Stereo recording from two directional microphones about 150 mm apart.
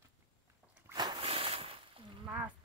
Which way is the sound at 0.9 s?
30° right (ahead or behind).